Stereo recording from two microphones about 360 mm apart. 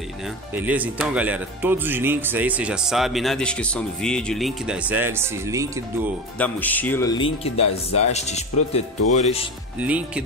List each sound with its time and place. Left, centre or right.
0.6 s speech: centre
6.3 s speech: centre
9.8 s speech: centre